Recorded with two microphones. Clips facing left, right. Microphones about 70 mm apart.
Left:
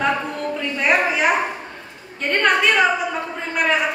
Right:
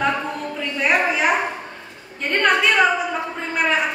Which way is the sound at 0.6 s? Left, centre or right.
Centre.